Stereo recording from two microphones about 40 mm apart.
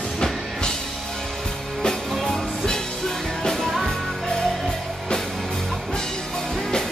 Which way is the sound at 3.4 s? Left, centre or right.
Centre.